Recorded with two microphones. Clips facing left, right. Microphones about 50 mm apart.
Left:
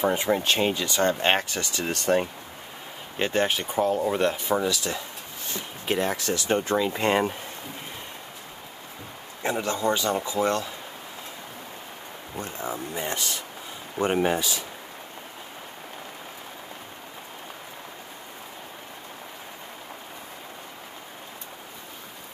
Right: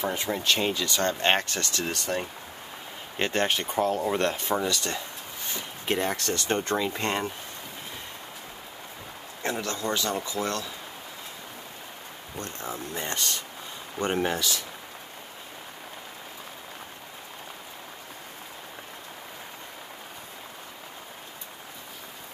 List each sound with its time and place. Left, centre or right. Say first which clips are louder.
0.0 s speech: left 5 dB; centre
1.9 s speech: left 10 dB; left
3.2 s speech: left 2 dB; centre
9.6 s speech: left 6 dB; centre
12.4 s speech: left 3 dB; centre